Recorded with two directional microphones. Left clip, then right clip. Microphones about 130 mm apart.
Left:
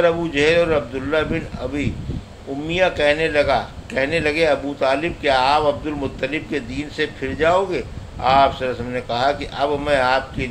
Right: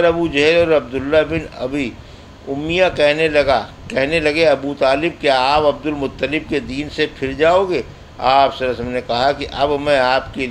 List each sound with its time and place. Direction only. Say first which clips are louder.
0.0 s a man's voice: right 3 dB; 35° right (ahead or behind)